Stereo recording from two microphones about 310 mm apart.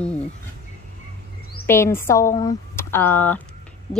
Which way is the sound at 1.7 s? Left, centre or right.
Centre.